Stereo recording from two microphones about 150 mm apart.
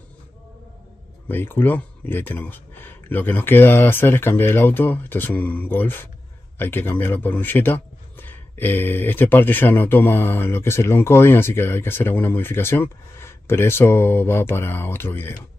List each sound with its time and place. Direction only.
1.3 s a man's voice: 15° left (ahead or behind)